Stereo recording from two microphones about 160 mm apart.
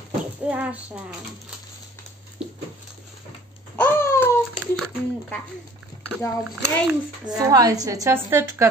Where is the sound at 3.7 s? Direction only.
15° left (ahead or behind).